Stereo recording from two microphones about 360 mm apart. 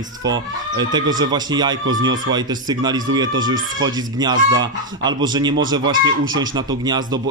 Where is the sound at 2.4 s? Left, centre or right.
Centre.